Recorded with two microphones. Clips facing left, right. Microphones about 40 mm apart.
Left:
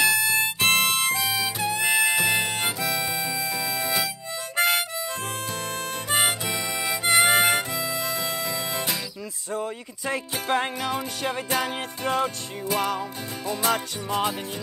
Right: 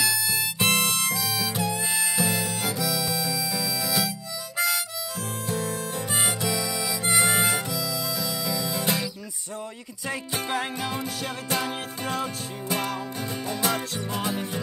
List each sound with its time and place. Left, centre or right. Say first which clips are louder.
0.0 s music: left 5 dB; left
1.8 s harmonica: left 5 dB; left
6.4 s harmonica: even; left
10.0 s music: left 3 dB; centre